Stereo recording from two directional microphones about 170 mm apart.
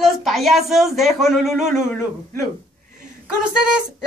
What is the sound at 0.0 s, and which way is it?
Music, centre (ahead or behind).